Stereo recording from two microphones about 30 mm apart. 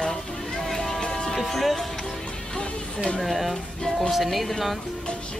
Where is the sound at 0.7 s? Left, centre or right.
Centre.